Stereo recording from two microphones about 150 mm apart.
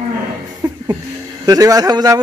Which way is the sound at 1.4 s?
25° right (ahead or behind).